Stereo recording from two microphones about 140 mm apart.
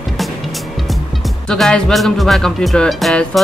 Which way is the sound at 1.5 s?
5° left (ahead or behind).